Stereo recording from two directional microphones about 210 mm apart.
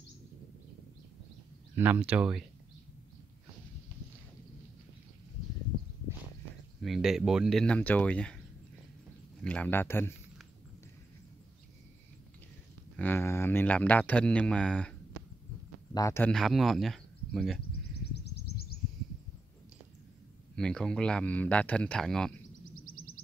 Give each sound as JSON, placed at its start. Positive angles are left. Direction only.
{"t": 1.8, "sound": "speech", "side_deg": -5}
{"t": 6.8, "sound": "speech", "side_deg": 0}
{"t": 9.4, "sound": "speech", "side_deg": 5}
{"t": 12.9, "sound": "speech", "side_deg": 10}
{"t": 16.3, "sound": "speech", "side_deg": 0}
{"t": 18.1, "sound": "a sound", "side_deg": 50}
{"t": 20.5, "sound": "speech", "side_deg": 5}
{"t": 22.8, "sound": "a sound", "side_deg": 45}